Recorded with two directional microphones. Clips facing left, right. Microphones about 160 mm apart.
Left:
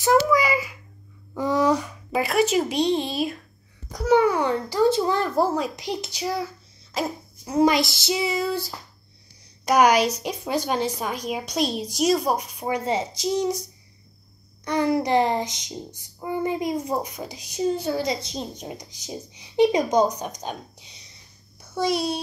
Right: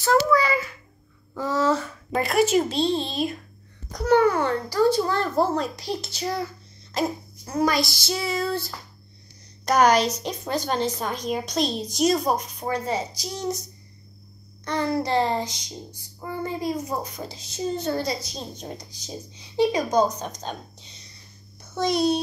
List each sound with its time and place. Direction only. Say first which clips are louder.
0.0 s a sound: left 1 dB; 15° left (ahead or behind)
2.1 s speech: right 1 dB; centre (ahead or behind)
2.7 s a woman's voice: left 2 dB; 15° left (ahead or behind)
7.4 s a woman's voice: left 4 dB; 20° left (ahead or behind)
14.6 s a woman's voice: left 3 dB; 15° left (ahead or behind)